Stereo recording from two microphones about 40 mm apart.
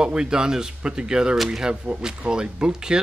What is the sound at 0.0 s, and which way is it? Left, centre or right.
Speech, right.